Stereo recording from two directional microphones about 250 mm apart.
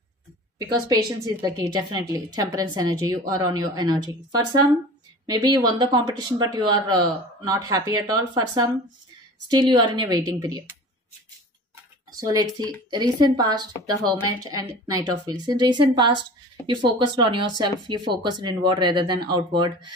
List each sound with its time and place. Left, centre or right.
0.6 s a woman's voice: centre
12.1 s a woman's voice: centre